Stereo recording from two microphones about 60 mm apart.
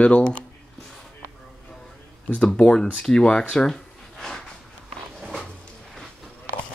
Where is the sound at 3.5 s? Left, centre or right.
Centre.